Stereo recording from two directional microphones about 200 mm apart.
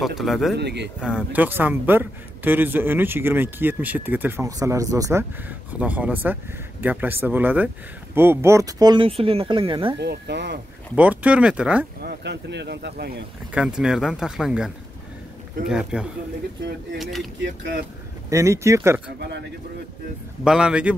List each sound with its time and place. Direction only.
0.0 s speech: centre (ahead or behind)
0.6 s speech: 55° right (ahead or behind)
1.0 s a man's voice: 5° right (ahead or behind); by 9.9 s 25° right (ahead or behind)
9.9 s speech: 55° right (ahead or behind)
11.0 s speech: 5° right (ahead or behind)
12.0 s speech: 55° right (ahead or behind)
13.5 s speech: 5° right (ahead or behind)
18.3 s a man's voice: 15° right (ahead or behind)
20.4 s speech: 5° right (ahead or behind)